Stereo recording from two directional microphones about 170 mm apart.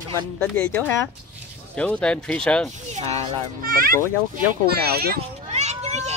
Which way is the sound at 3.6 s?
60° right (ahead or behind).